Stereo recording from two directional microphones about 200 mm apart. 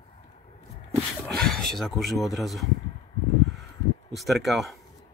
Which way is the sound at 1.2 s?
Centre (ahead or behind).